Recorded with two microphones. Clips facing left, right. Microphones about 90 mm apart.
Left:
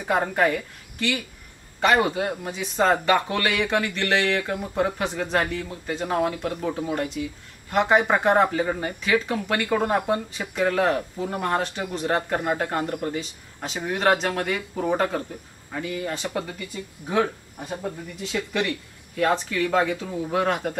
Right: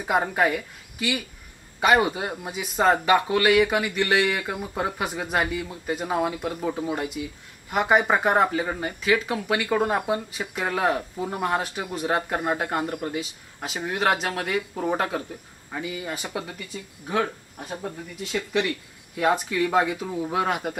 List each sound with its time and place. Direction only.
0.0 s speech: 10° right (ahead or behind)